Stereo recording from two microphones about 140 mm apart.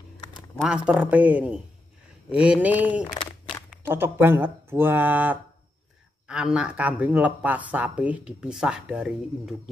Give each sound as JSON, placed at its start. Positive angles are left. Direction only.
{"t": 0.7, "sound": "speech", "side_deg": -10}
{"t": 3.0, "sound": "a sound", "side_deg": 35}
{"t": 3.7, "sound": "speech", "side_deg": -15}